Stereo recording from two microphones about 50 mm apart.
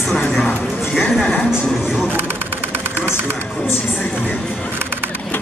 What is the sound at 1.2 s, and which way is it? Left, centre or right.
Speech, centre.